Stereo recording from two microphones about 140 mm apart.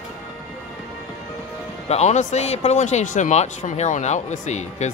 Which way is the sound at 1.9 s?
50° left (ahead or behind).